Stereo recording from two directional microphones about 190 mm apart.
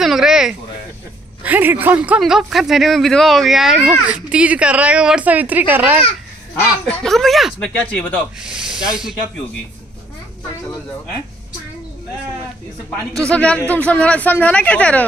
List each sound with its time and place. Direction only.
0.0 s speech: centre (ahead or behind)
6.9 s speech: centre (ahead or behind)
8.4 s speech: 5° right (ahead or behind)
13.2 s speech: 5° left (ahead or behind)